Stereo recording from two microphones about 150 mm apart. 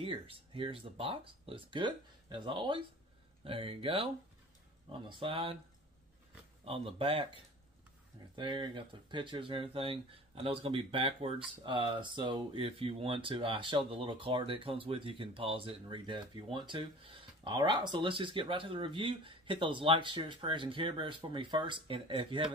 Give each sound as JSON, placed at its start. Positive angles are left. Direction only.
{"t": 0.0, "sound": "speech", "side_deg": -35}
{"t": 6.6, "sound": "speech", "side_deg": -40}
{"t": 8.4, "sound": "speech", "side_deg": -30}